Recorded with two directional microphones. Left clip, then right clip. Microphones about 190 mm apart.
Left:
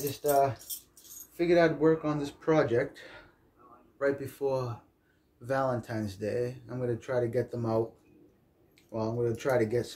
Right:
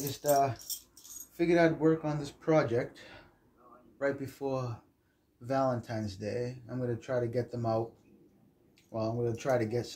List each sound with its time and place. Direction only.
0.1 s speech: 5° left (ahead or behind); by 7.8 s 25° left (ahead or behind)
8.9 s speech: 20° left (ahead or behind)